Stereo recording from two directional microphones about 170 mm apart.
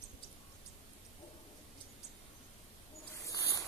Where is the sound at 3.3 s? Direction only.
20° left (ahead or behind).